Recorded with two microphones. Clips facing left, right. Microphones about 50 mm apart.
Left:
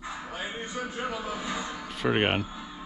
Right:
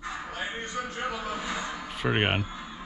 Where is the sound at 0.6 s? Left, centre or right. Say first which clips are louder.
Right 1 dB; centre.